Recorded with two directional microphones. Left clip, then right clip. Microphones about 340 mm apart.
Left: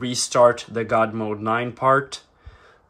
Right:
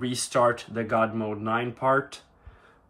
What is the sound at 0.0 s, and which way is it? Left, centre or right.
Speech, centre.